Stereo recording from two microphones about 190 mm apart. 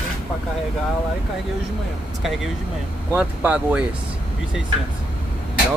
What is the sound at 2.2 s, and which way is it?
Speech, centre (ahead or behind).